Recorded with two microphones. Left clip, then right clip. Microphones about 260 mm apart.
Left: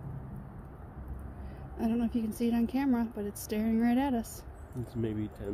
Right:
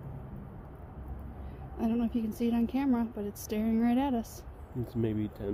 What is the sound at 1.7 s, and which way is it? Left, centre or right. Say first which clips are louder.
A woman's voice: even; centre.